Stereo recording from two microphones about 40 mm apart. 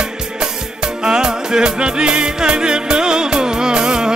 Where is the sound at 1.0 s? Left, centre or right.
Centre.